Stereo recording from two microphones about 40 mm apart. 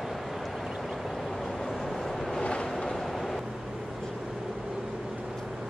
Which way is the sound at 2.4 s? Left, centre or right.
Left.